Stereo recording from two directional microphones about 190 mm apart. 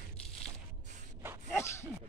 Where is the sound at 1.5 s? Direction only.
15° left (ahead or behind).